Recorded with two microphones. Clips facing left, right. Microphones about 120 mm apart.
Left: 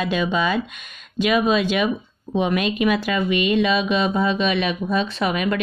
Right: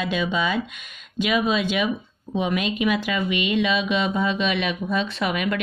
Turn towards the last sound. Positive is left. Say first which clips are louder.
# left 3 dB
turn(degrees=35)  # may be behind; listen again after turning